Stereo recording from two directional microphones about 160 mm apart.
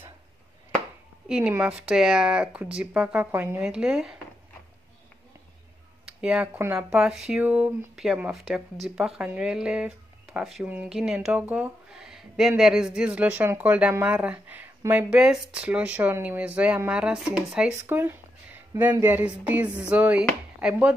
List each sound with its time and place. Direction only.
1.3 s speech: 10° right (ahead or behind)
6.2 s speech: 5° right (ahead or behind)
7.0 s speech: centre (ahead or behind)